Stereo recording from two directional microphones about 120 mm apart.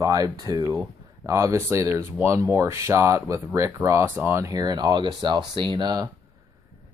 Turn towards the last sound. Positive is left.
turn(degrees=-35)  # may be behind; listen again after turning